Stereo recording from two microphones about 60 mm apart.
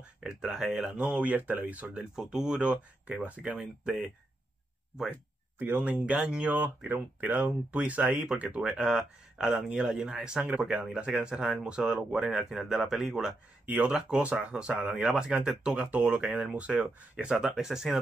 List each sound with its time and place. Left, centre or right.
0.2 s speech: centre
1.0 s speech: right
2.1 s speech: centre
2.7 s speech: right
5.9 s speech: right
12.4 s speech: centre
13.7 s speech: right
13.9 s speech: centre